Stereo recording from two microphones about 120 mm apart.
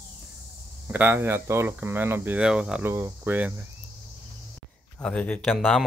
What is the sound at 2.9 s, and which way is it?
Speech, 20° right (ahead or behind).